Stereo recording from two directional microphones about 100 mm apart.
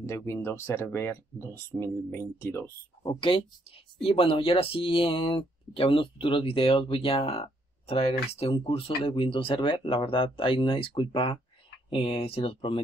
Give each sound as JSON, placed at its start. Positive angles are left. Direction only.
{"t": 0.0, "sound": "speech", "side_deg": 25}
{"t": 3.1, "sound": "speech", "side_deg": 60}